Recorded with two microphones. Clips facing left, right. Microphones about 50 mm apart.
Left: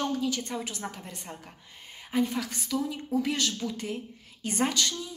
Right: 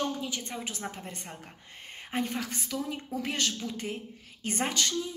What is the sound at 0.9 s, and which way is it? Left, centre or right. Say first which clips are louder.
A woman's voice: even; right.